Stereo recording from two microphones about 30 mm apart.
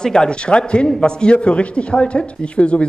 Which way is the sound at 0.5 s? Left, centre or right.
Left.